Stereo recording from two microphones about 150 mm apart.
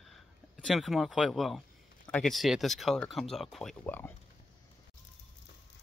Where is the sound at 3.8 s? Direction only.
15° left (ahead or behind).